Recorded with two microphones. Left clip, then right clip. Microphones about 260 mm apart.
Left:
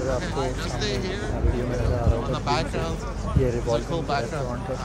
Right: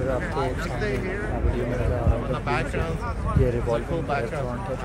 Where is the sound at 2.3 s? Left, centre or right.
Centre.